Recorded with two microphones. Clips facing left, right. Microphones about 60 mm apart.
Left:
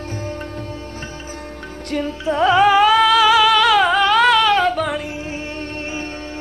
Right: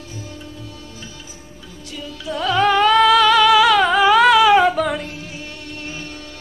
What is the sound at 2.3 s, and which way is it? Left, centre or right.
Carnatic music, left.